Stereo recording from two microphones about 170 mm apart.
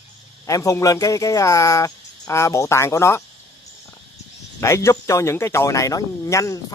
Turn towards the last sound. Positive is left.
turn(degrees=20)  # may be behind; listen again after turning